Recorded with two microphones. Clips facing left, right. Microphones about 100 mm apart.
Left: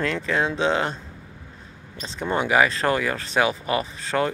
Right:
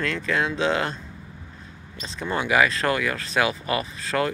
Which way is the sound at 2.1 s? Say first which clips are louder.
Left 2 dB; 25° left (ahead or behind).